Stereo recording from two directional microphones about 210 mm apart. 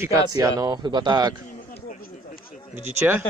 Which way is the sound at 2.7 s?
10° right (ahead or behind).